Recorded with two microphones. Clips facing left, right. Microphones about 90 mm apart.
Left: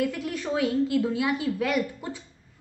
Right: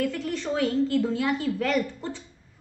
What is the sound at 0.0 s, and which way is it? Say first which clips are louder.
A woman's voice: even; 10° left (ahead or behind).